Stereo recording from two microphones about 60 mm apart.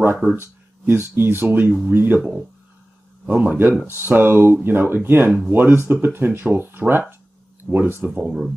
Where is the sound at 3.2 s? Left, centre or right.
Right.